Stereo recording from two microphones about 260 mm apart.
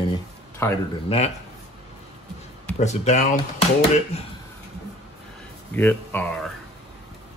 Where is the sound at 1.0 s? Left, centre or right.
Left.